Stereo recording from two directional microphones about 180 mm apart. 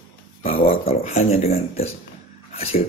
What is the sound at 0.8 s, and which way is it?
Speech, 35° left (ahead or behind).